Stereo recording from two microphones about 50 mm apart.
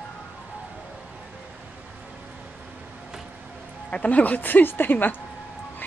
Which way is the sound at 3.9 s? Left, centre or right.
Left.